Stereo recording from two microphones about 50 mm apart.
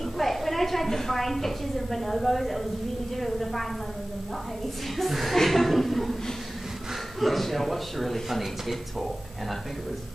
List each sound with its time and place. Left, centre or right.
0.2 s speech: centre
4.9 s speech: centre
7.2 s speech: centre